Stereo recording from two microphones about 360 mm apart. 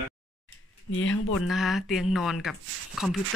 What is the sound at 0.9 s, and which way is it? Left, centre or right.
Speech, left.